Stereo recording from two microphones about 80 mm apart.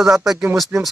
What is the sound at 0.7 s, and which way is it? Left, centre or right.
Speech, right.